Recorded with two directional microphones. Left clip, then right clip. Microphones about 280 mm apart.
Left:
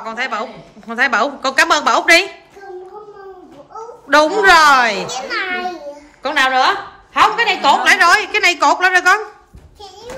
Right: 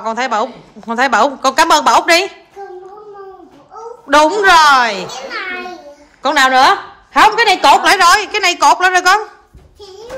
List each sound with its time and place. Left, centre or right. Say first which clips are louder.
0.0 s a woman's voice: right 5 dB; centre
4.1 s a woman's voice: right 1 dB; centre
6.2 s a woman's voice: right 4 dB; centre